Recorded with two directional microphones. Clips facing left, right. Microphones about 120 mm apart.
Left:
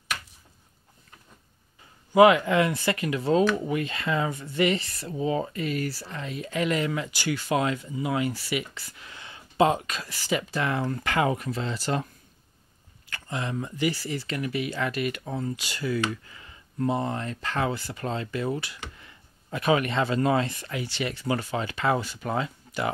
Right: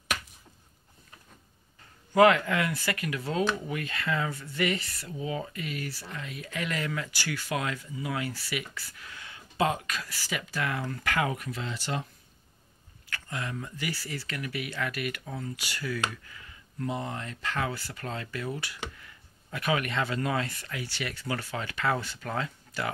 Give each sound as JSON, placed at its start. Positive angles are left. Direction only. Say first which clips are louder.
{"t": 2.1, "sound": "speech", "louder": "left 4 dB", "side_deg": 15}
{"t": 13.1, "sound": "speech", "louder": "left 4 dB", "side_deg": 25}